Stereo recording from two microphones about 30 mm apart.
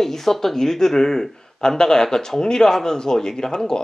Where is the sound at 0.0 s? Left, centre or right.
Centre.